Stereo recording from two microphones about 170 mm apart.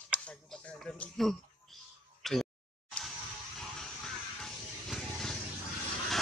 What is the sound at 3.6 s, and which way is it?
Music, 5° left (ahead or behind).